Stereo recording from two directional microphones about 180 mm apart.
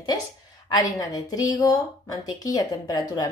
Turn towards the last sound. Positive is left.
turn(degrees=20)  # may be behind; listen again after turning